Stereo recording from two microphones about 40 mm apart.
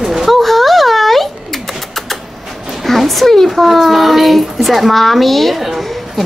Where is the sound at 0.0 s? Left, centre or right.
Centre.